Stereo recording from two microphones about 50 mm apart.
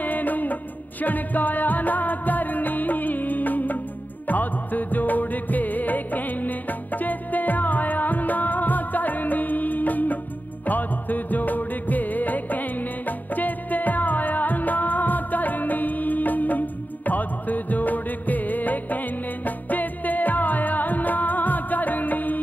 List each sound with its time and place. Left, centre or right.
0.0 s music: left